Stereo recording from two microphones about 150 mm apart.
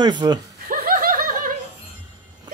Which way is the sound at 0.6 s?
70° right (ahead or behind).